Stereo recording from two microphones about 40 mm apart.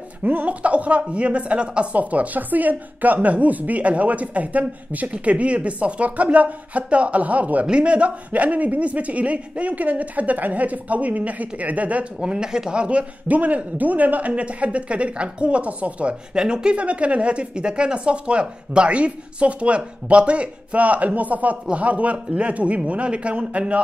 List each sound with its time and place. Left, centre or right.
0.2 s a man's voice: right
7.6 s a man's voice: right
12.2 s speech: right
12.7 s speech: right
13.3 s a man's voice: right
16.3 s speech: right
16.8 s a man's voice: right